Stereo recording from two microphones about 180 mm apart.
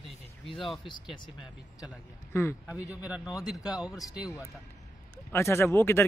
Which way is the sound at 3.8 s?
20° left (ahead or behind).